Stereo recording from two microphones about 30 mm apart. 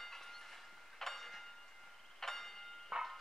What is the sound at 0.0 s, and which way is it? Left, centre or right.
Train, centre.